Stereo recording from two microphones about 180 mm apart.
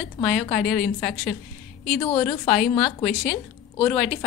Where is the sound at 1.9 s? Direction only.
20° left (ahead or behind).